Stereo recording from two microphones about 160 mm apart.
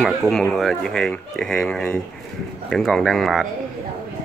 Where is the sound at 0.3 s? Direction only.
5° left (ahead or behind).